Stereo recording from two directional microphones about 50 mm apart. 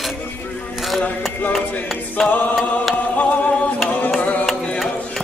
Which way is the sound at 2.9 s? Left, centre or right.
Left.